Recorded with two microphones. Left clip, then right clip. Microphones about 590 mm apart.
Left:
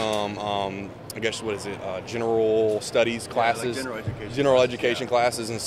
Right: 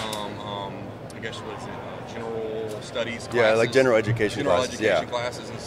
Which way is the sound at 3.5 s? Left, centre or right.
Right.